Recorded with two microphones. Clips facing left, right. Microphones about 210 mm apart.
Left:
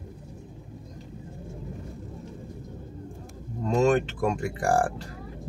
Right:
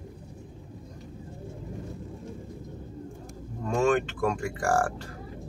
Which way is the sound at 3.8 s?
20° left (ahead or behind).